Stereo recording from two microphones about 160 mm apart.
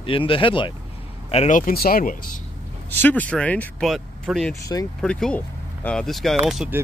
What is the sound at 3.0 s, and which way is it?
Speech, 10° left (ahead or behind).